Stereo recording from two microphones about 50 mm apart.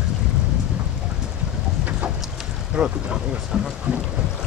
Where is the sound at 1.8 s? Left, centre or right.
Right.